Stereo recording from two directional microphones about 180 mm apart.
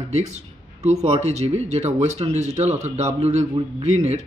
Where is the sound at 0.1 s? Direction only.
40° right (ahead or behind).